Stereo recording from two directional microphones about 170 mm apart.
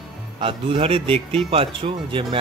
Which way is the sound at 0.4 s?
30° right (ahead or behind).